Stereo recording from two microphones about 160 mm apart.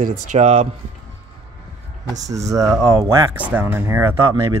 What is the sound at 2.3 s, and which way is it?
Speech, 20° right (ahead or behind).